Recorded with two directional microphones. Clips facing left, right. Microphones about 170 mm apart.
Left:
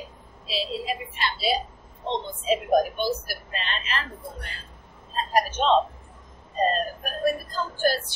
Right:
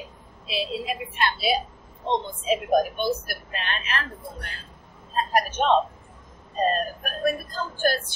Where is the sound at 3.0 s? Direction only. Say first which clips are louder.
Right 1 dB; 55° right (ahead or behind).